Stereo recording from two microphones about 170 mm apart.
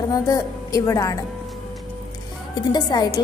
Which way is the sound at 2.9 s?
20° left (ahead or behind).